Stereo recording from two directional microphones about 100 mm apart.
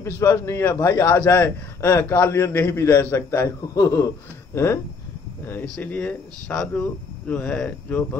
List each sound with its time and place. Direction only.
0.2 s a man's voice: 30° left (ahead or behind)